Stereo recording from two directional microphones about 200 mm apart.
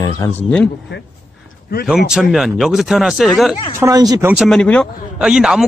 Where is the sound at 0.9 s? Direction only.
60° left (ahead or behind).